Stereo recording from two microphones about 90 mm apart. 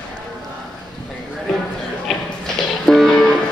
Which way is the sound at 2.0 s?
5° left (ahead or behind).